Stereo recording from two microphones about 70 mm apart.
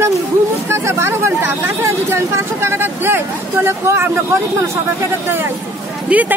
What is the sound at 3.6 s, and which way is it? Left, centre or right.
Speech, right.